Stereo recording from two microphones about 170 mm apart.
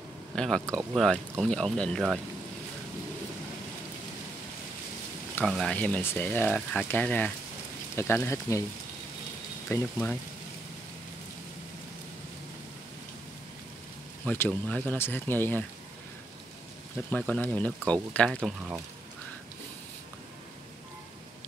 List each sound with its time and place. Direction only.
0.4 s speech: centre (ahead or behind)
5.4 s speech: 5° left (ahead or behind)
9.7 s speech: 15° left (ahead or behind)
14.2 s speech: 10° left (ahead or behind)
17.1 s speech: 10° left (ahead or behind)